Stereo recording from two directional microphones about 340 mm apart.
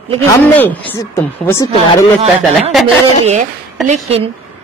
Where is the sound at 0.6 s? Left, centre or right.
Centre.